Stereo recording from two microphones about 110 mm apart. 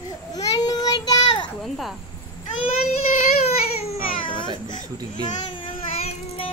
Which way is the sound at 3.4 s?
75° left (ahead or behind).